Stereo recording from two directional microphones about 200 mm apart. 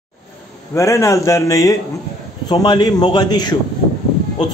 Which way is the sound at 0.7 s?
15° left (ahead or behind).